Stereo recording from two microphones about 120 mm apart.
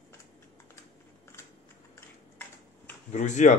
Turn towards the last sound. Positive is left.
turn(degrees=85)